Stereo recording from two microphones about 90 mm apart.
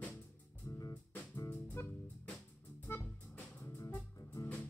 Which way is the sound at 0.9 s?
20° left (ahead or behind).